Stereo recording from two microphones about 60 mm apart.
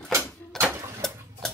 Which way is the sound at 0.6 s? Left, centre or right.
Right.